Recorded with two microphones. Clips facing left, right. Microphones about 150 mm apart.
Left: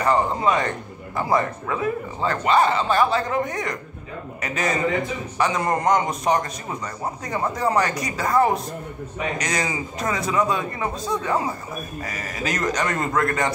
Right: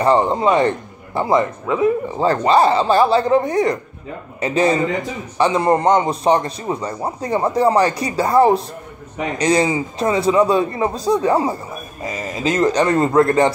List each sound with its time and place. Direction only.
0.0 s speech: 30° right (ahead or behind)
2.1 s a man's voice: 35° right (ahead or behind)